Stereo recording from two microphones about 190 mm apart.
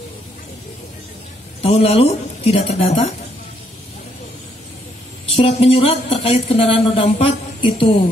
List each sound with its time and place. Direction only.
1.6 s a woman's voice: 30° left (ahead or behind)
5.3 s a woman's voice: 30° left (ahead or behind)